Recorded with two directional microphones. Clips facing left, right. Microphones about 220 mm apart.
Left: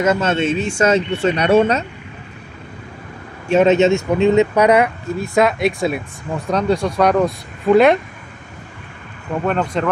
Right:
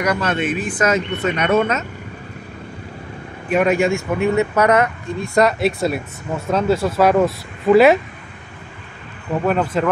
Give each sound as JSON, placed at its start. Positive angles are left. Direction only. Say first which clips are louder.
{"t": 0.0, "sound": "speech", "louder": "left 3 dB", "side_deg": 25}
{"t": 3.4, "sound": "speech", "louder": "left 4 dB", "side_deg": 25}
{"t": 9.5, "sound": "speech", "louder": "right 1 dB", "side_deg": -5}